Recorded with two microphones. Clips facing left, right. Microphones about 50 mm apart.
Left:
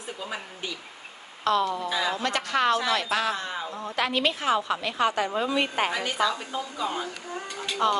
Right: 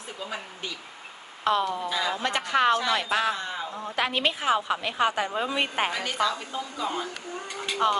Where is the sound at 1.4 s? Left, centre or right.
Right.